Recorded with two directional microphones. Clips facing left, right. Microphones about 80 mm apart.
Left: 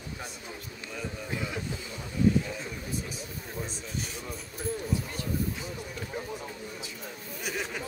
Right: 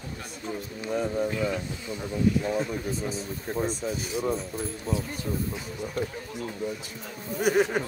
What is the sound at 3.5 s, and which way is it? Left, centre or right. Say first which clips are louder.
Speech: right 11 dB; right.